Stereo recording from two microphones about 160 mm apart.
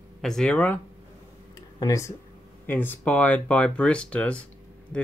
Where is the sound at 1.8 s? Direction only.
20° left (ahead or behind).